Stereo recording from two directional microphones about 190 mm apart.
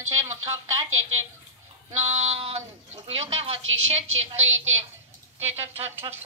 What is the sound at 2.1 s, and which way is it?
Female singing, 35° right (ahead or behind).